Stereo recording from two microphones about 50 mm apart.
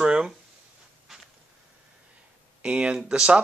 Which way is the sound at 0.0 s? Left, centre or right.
Centre.